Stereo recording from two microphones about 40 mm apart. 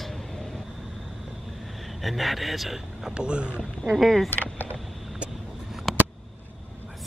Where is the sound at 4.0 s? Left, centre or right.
Centre.